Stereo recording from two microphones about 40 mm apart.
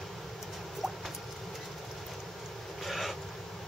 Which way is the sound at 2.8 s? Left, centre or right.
Centre.